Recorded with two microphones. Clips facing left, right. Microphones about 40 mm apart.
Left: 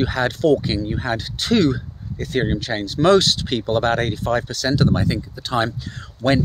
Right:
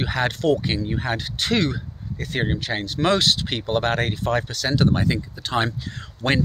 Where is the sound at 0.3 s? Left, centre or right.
Right.